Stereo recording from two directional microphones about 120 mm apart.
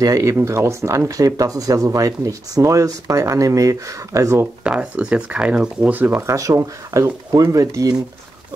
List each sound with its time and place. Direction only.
0.0 s speech: 30° right (ahead or behind)
4.6 s speech: 10° right (ahead or behind); by 7.9 s 25° right (ahead or behind)